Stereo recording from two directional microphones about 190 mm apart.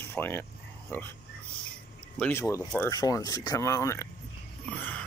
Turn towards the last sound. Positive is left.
turn(degrees=10)  # may be behind; listen again after turning